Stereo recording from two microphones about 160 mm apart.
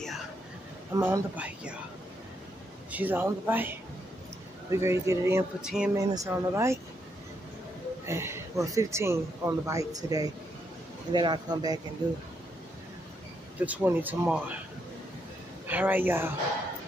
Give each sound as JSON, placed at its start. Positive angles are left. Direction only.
{"t": 0.9, "sound": "a man's voice", "side_deg": -20}
{"t": 1.3, "sound": "speech", "side_deg": -5}
{"t": 2.9, "sound": "speech", "side_deg": -10}
{"t": 5.6, "sound": "speech", "side_deg": -5}
{"t": 5.9, "sound": "speech", "side_deg": -20}
{"t": 8.1, "sound": "a man's voice", "side_deg": -15}
{"t": 13.6, "sound": "speech", "side_deg": -10}
{"t": 15.6, "sound": "speech", "side_deg": -10}